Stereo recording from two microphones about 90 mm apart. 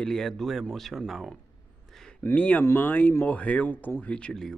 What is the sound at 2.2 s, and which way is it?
Speech, 20° left (ahead or behind).